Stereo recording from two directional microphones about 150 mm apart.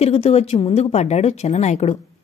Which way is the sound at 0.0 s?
40° left (ahead or behind).